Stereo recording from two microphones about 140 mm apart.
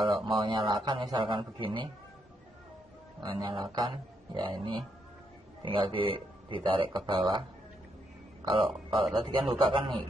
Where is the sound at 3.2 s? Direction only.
30° right (ahead or behind).